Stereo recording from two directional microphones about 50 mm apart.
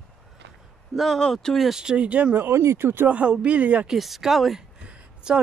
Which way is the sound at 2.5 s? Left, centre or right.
Right.